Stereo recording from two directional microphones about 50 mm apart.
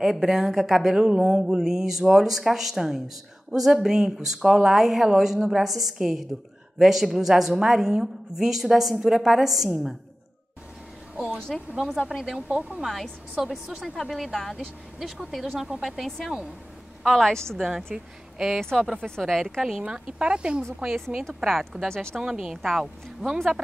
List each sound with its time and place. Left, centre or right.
0.0 s a woman's voice: centre
0.9 s a woman's voice: centre
11.7 s a woman's voice: centre
12.4 s speech: right
13.4 s a woman's voice: centre
17.0 s a woman's voice: centre
17.9 s speech: centre
18.6 s a woman's voice: centre
19.8 s speech: centre
21.4 s a woman's voice: centre
21.8 s a woman's voice: centre
22.2 s a woman's voice: centre